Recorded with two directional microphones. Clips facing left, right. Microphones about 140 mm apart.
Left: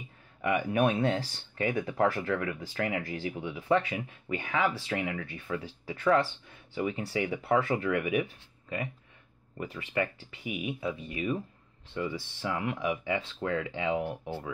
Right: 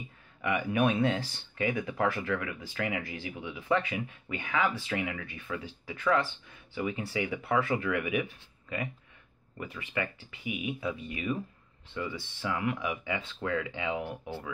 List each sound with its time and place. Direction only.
0.4 s speech: 35° left (ahead or behind)